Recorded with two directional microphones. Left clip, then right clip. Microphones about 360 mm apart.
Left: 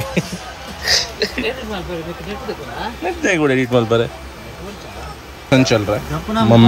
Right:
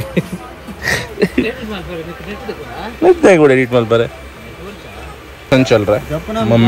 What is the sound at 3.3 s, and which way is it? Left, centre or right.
Speech, centre.